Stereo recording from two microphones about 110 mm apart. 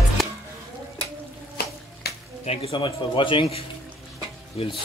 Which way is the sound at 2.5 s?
65° left (ahead or behind).